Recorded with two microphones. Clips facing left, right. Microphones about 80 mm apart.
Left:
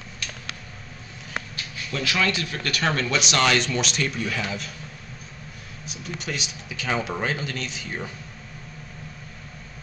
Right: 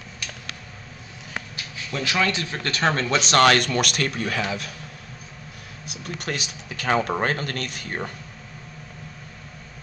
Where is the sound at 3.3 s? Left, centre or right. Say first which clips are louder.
Right 6 dB; right.